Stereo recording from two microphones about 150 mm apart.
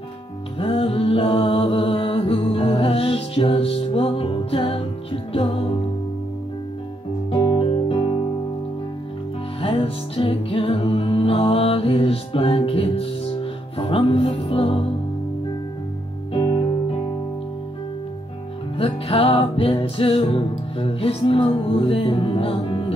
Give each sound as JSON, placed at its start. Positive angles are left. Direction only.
{"t": 0.6, "sound": "music", "side_deg": 40}
{"t": 7.2, "sound": "music", "side_deg": 35}
{"t": 9.6, "sound": "music", "side_deg": 40}
{"t": 16.3, "sound": "music", "side_deg": 35}
{"t": 18.8, "sound": "music", "side_deg": 40}